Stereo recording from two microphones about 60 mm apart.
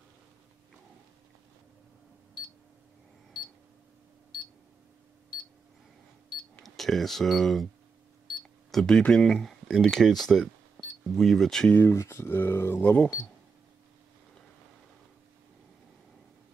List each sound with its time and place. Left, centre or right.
6.6 s speech: centre
8.4 s cash register: centre
9.1 s speech: centre
11.9 s speech: left
12.8 s speech: left